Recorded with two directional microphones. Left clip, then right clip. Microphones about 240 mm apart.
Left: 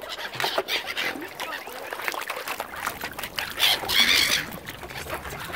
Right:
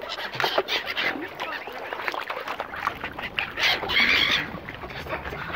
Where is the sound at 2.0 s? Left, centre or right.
Centre.